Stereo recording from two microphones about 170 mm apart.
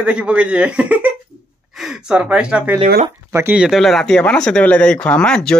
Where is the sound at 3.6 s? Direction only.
Centre (ahead or behind).